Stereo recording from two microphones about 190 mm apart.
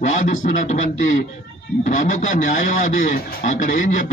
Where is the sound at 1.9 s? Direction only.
40° left (ahead or behind).